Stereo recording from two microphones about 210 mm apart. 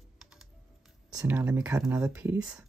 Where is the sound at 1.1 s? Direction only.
15° right (ahead or behind).